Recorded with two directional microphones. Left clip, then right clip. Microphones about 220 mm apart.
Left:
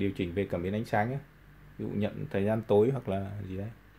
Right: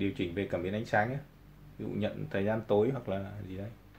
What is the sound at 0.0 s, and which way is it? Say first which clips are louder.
Speech: left 2 dB; 40° left (ahead or behind).